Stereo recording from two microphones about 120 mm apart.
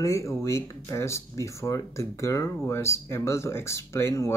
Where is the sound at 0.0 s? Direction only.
25° left (ahead or behind).